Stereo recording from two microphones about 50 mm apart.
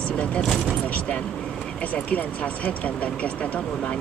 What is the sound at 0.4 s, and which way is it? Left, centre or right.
Speech, centre.